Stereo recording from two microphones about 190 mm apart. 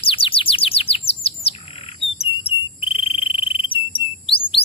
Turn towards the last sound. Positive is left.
turn(degrees=30)  # may be behind; listen again after turning